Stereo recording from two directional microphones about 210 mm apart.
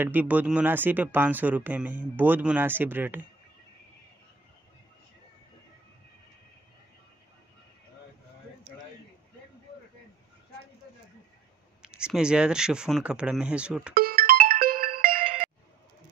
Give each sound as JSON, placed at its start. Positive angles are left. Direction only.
{"t": 0.0, "sound": "speech", "side_deg": -10}
{"t": 11.8, "sound": "speech", "side_deg": -5}
{"t": 13.9, "sound": "music", "side_deg": -45}